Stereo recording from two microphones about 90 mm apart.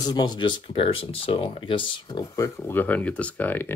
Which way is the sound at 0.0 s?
50° left (ahead or behind).